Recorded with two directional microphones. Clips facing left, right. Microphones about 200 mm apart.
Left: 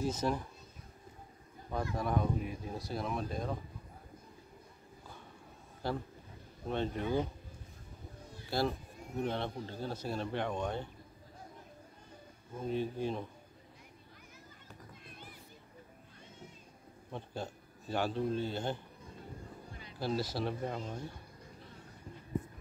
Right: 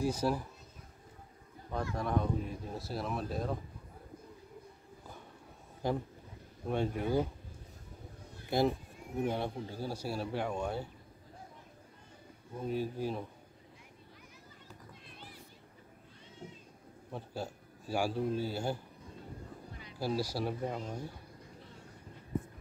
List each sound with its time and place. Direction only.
0.0 s speech: 10° right (ahead or behind)
1.7 s speech: 5° left (ahead or behind)
5.8 s a man's voice: 15° right (ahead or behind)
8.5 s speech: 20° right (ahead or behind)
12.6 s speech: 5° right (ahead or behind)
15.0 s a sound: 50° left (ahead or behind)
17.1 s a man's voice: 5° right (ahead or behind)
20.0 s speech: 10° right (ahead or behind)